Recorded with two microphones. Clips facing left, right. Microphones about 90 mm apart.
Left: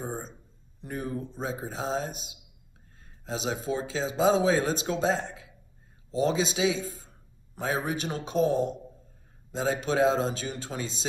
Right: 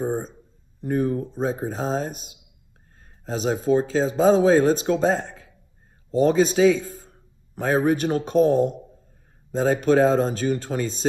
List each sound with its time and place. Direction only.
0.0 s a man's voice: 40° right (ahead or behind)